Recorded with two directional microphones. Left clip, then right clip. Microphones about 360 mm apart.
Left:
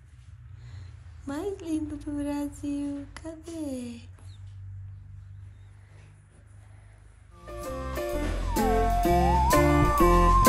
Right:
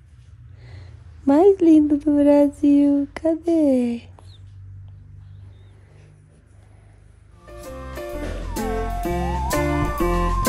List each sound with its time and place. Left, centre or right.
0.7 s a woman's voice: centre
7.4 s music: centre